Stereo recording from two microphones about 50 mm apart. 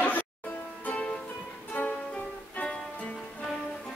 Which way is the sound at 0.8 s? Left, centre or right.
Left.